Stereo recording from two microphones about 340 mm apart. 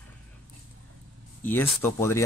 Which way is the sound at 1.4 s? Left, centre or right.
Centre.